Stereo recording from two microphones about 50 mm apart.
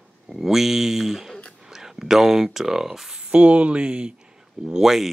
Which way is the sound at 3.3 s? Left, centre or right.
Right.